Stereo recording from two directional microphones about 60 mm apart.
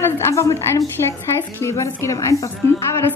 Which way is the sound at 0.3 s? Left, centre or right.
Left.